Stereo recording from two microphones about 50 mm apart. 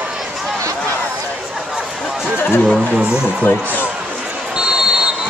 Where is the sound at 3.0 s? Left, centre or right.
Centre.